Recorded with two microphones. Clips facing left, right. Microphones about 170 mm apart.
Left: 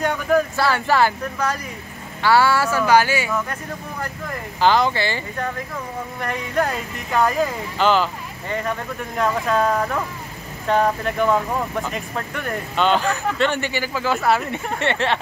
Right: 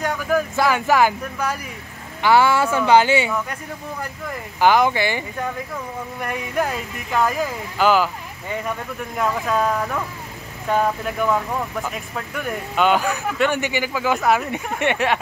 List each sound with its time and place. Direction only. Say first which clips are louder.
0.0 s a sound: left 2 dB; centre (ahead or behind)
0.6 s speech: right 1 dB; 15° right (ahead or behind)
4.6 s speech: right 1 dB; 15° right (ahead or behind)
6.2 s speech: left 1 dB; 10° right (ahead or behind)
10.7 s speech: left 1 dB; 5° right (ahead or behind)